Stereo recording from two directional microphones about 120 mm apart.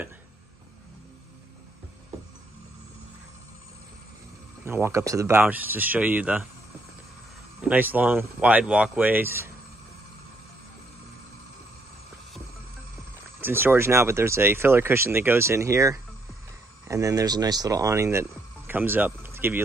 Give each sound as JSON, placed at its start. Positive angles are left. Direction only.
{"t": 4.6, "sound": "speech", "side_deg": -20}
{"t": 7.6, "sound": "speech", "side_deg": -15}
{"t": 13.4, "sound": "speech", "side_deg": -20}